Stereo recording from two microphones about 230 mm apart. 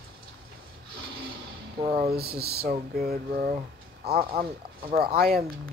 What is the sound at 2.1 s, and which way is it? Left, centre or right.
Speech, right.